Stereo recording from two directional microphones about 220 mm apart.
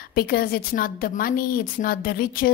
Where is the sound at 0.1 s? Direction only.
45° left (ahead or behind).